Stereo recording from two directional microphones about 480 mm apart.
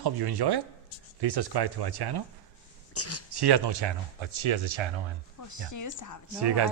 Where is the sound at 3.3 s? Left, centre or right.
Right.